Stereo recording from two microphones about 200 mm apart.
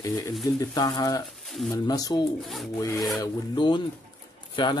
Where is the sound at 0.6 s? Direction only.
20° left (ahead or behind).